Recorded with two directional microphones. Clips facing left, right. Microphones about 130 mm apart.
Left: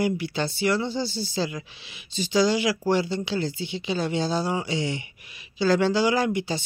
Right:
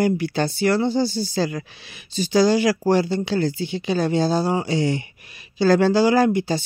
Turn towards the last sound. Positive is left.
turn(degrees=-40)  # may be behind; listen again after turning